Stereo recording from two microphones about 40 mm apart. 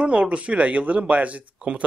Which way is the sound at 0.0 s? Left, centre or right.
Right.